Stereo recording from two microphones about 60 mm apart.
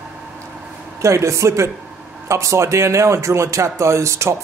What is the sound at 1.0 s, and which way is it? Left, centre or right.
Speech, right.